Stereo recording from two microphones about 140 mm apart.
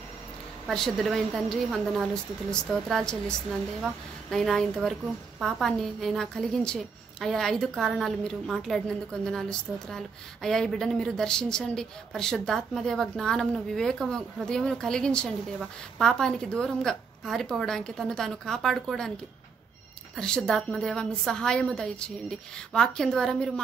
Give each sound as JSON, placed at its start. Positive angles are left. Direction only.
{"t": 0.7, "sound": "a woman's voice", "side_deg": 0}
{"t": 20.2, "sound": "a woman's voice", "side_deg": 5}